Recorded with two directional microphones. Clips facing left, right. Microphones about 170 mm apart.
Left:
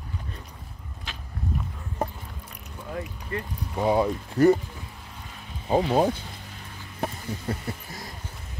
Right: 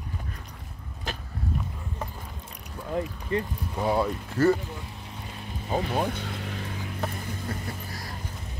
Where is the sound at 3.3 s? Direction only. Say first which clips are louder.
Right 5 dB; 20° right (ahead or behind).